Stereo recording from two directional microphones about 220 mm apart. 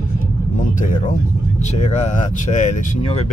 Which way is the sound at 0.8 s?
35° left (ahead or behind).